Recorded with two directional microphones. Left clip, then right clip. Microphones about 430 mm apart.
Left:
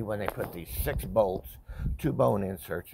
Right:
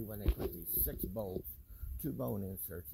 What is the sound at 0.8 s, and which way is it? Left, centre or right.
Speech, left.